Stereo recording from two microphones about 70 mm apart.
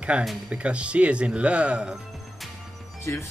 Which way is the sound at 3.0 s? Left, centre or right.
Left.